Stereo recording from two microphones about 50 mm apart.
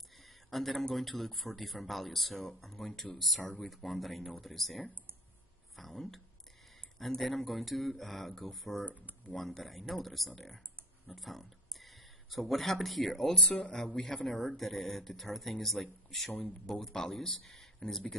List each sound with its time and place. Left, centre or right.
0.2 s a sound: centre
0.9 s speech: centre
8.8 s speech: right
9.3 s speech: centre
13.4 s speech: left
14.2 s speech: centre